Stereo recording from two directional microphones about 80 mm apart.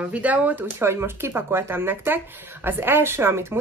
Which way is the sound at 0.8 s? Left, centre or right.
Right.